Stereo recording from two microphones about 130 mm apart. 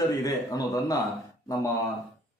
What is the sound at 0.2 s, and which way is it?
Speech, 30° left (ahead or behind).